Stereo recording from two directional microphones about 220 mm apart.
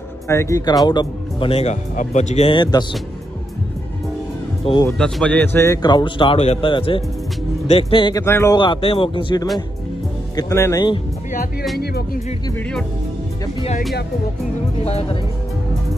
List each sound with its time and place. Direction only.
0.3 s speech: 15° left (ahead or behind)
4.6 s speech: 20° left (ahead or behind)
4.9 s speech: 5° left (ahead or behind)
11.8 s speech: 45° left (ahead or behind)
12.4 s speech: 5° left (ahead or behind)
14.8 s speech: 30° left (ahead or behind)